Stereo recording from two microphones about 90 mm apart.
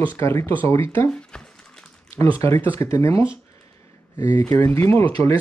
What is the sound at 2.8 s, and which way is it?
Speech, 35° left (ahead or behind).